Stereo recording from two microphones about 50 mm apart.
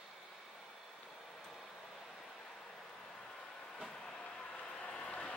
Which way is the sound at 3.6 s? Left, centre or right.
Centre.